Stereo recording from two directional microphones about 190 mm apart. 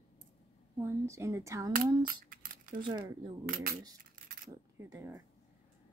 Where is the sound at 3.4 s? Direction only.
50° right (ahead or behind).